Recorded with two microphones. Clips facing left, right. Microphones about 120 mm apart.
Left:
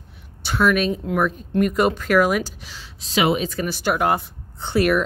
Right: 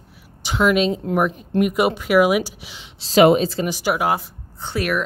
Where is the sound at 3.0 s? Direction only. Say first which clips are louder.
Right 7 dB; 40° right (ahead or behind).